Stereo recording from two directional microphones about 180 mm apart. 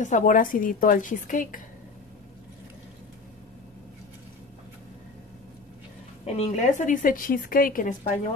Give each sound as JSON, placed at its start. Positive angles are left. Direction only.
{"t": 0.0, "sound": "a woman's voice", "side_deg": 45}
{"t": 6.2, "sound": "a woman's voice", "side_deg": 35}